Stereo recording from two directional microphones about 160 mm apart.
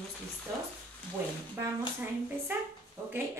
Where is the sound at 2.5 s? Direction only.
15° right (ahead or behind).